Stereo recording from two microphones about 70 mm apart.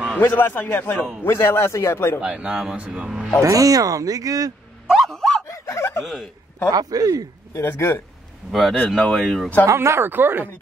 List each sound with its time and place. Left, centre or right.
0.2 s a man's voice: left
2.1 s speech: centre
3.4 s speech: right
4.9 s bow-wow: centre
5.5 s bow-wow: left
6.7 s speech: right
7.5 s a man's voice: left
8.5 s speech: centre
9.7 s speech: right